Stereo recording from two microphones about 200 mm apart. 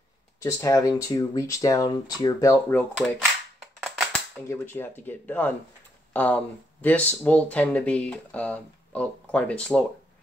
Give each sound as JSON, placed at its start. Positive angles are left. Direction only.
{"t": 0.4, "sound": "speech", "side_deg": 15}
{"t": 3.8, "sound": "a sound", "side_deg": 0}
{"t": 4.5, "sound": "speech", "side_deg": 10}